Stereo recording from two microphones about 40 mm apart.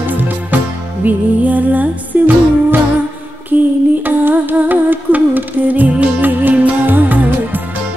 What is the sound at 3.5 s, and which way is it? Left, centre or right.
Music, right.